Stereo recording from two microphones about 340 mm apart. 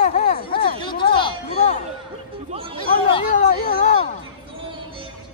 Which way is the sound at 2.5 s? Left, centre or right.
Centre.